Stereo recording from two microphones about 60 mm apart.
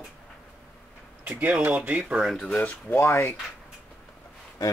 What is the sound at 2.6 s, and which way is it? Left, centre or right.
Speech, left.